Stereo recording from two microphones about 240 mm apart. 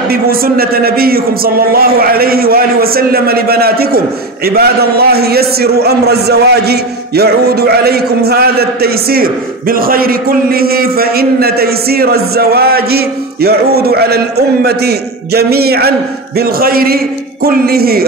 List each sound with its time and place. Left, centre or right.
0.1 s a man's voice: right